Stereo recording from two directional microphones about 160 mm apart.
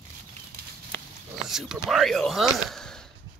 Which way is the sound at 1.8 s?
Centre (ahead or behind).